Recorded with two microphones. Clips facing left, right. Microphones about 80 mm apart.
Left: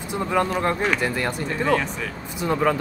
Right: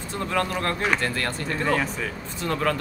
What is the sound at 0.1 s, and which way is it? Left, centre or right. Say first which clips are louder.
Speech: left 4 dB; centre.